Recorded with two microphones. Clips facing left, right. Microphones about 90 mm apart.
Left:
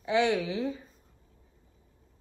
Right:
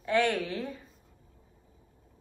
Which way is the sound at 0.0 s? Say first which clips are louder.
Left 1 dB; 10° left (ahead or behind).